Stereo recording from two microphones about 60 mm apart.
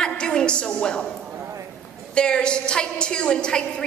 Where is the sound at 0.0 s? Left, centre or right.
Centre.